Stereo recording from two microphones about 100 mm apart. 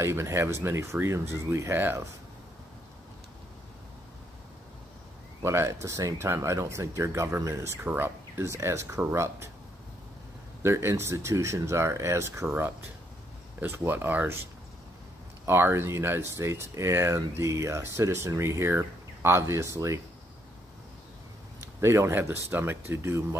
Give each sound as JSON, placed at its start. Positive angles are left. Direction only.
{"t": 0.0, "sound": "speech", "side_deg": -25}
{"t": 5.4, "sound": "speech", "side_deg": -30}
{"t": 7.8, "sound": "speech", "side_deg": -20}
{"t": 10.6, "sound": "speech", "side_deg": -25}
{"t": 15.4, "sound": "speech", "side_deg": -25}
{"t": 21.8, "sound": "speech", "side_deg": -25}